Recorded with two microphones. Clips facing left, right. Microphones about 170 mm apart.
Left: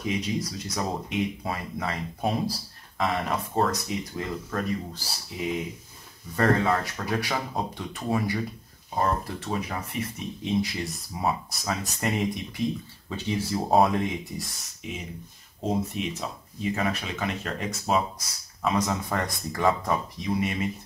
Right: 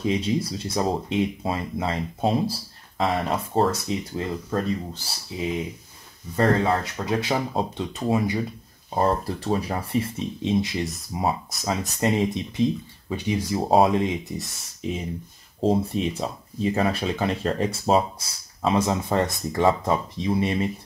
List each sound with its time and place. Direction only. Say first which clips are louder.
0.0 s speech: right 5 dB; 30° right (ahead or behind)
13.1 s speech: right 3 dB; 15° right (ahead or behind)
13.7 s speech: right 3 dB; 25° right (ahead or behind)